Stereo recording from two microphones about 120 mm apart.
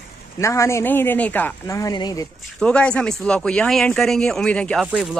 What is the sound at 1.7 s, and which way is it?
Speech, 30° left (ahead or behind).